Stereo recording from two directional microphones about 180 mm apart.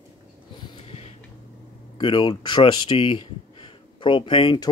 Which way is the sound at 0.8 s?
35° left (ahead or behind).